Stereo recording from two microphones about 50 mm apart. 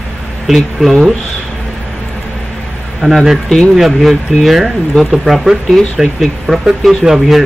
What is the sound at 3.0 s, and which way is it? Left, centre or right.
Speech, centre.